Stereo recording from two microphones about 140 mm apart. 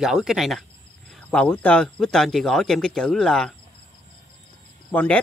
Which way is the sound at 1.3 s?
10° left (ahead or behind).